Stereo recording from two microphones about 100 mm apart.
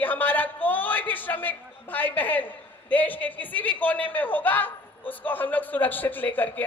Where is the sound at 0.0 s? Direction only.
20° left (ahead or behind).